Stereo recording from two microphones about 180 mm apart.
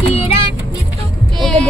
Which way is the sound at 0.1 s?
35° left (ahead or behind).